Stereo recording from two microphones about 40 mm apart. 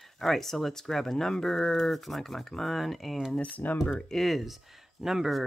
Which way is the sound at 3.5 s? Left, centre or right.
Left.